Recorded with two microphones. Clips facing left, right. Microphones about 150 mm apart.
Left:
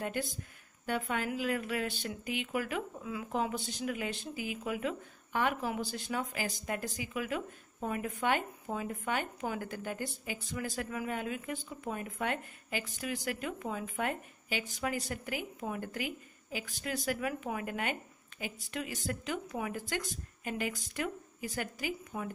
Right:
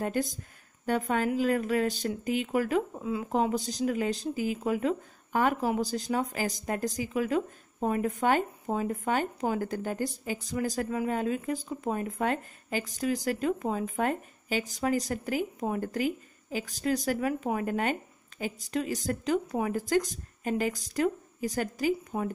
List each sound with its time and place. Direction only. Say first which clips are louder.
0.0 s speech: right 6 dB; 40° right (ahead or behind)